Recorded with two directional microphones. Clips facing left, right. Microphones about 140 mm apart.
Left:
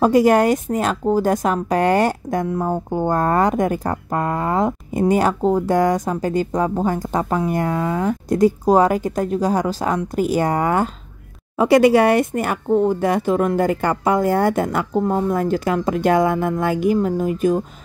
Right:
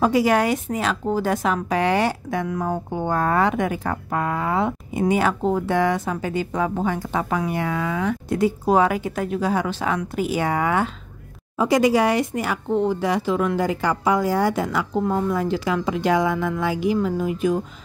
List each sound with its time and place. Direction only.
0.0 s speech: 45° left (ahead or behind)
2.4 s speech: 30° left (ahead or behind)
2.9 s speech: 45° left (ahead or behind)
11.5 s speech: 65° left (ahead or behind); by 17.6 s 45° left (ahead or behind)